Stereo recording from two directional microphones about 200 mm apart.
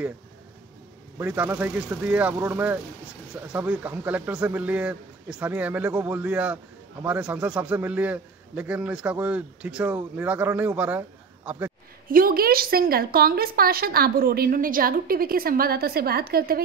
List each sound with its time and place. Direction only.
1.1 s speech: 10° right (ahead or behind)
12.1 s a woman's voice: 45° right (ahead or behind)